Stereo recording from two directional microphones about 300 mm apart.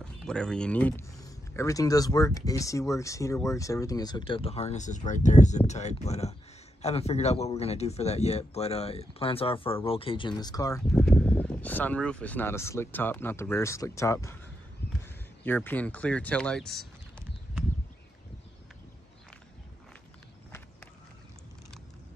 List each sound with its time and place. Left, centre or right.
0.0 s speech: centre
14.8 s a sound: left
15.4 s speech: centre